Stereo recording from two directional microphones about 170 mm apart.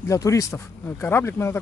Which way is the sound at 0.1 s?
20° left (ahead or behind).